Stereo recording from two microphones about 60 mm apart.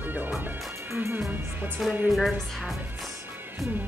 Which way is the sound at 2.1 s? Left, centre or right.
Centre.